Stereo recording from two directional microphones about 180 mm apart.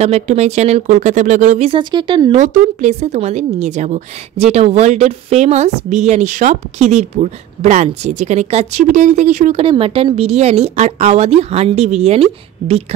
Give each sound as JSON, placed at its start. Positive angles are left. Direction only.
{"t": 0.0, "sound": "a woman's voice", "side_deg": -40}
{"t": 1.8, "sound": "speech", "side_deg": -25}
{"t": 2.3, "sound": "a woman's voice", "side_deg": -45}